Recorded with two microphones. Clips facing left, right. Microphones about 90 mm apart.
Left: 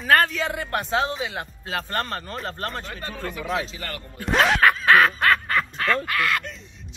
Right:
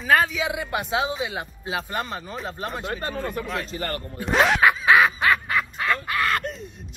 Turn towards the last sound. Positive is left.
turn(degrees=-45)  # may be behind; listen again after turning